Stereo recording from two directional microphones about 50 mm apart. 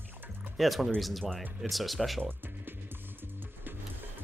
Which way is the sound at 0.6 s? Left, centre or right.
Centre.